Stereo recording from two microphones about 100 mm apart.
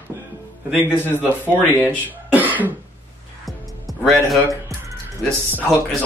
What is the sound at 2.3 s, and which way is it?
Cough, 15° right (ahead or behind).